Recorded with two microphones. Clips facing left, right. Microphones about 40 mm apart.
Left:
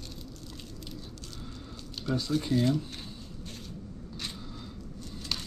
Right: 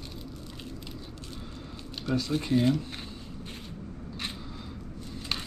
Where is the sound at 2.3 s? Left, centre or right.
Right.